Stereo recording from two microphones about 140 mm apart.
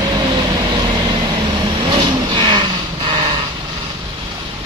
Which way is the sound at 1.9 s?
35° right (ahead or behind).